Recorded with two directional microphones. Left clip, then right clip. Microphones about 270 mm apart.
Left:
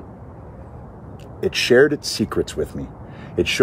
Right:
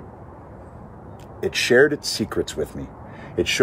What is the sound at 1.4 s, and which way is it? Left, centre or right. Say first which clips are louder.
Speech: left 2 dB; centre.